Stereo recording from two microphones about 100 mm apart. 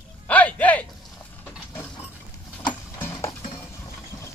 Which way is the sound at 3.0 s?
25° left (ahead or behind).